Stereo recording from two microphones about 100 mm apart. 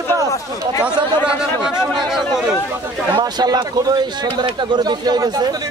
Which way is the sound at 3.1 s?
45° right (ahead or behind).